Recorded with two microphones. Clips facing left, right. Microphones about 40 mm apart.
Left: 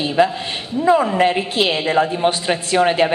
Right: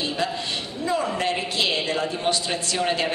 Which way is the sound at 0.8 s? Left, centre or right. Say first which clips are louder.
Left 10 dB; left.